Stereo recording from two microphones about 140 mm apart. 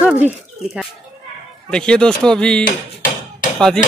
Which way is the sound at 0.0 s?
10° right (ahead or behind).